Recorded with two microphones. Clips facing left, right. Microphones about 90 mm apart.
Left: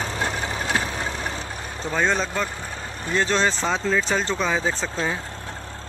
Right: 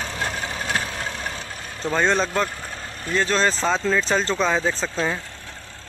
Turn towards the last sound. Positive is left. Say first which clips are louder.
# right 1 dB
turn(degrees=10)  # may be behind; listen again after turning